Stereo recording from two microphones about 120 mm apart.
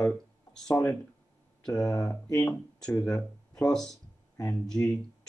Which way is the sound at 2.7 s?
10° left (ahead or behind).